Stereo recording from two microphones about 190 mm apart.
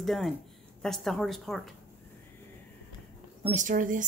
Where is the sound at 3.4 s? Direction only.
40° right (ahead or behind).